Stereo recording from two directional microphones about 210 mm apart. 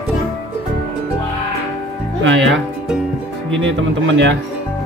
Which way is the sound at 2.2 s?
60° right (ahead or behind).